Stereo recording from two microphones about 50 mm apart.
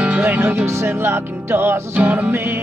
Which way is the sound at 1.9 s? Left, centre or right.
Right.